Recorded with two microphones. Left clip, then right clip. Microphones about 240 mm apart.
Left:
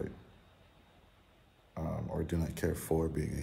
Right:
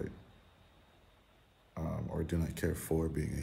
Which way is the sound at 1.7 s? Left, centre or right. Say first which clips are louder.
Left 2 dB; centre.